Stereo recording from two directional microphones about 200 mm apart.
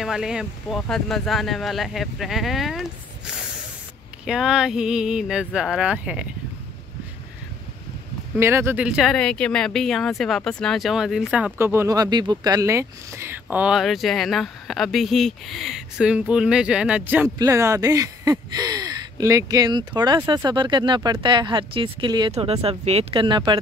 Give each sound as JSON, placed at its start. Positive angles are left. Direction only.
{"t": 0.0, "sound": "speech", "side_deg": 0}
{"t": 4.3, "sound": "speech", "side_deg": -5}
{"t": 8.4, "sound": "speech", "side_deg": -15}